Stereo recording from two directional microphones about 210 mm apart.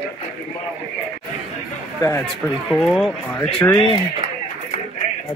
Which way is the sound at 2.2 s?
5° left (ahead or behind).